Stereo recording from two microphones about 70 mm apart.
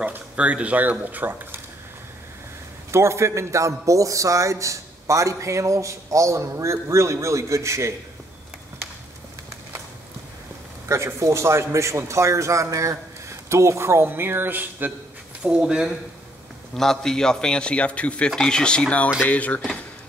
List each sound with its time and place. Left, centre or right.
0.0 s speech: right
2.9 s a man's voice: right
10.9 s a man's voice: right
15.4 s speech: centre
16.7 s speech: centre